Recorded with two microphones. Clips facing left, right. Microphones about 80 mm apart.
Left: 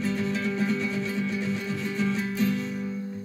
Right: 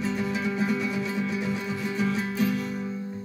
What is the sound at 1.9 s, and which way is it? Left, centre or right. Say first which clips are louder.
Music: right 1 dB; centre.